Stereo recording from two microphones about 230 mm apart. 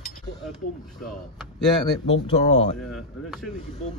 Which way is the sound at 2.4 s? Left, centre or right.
Left.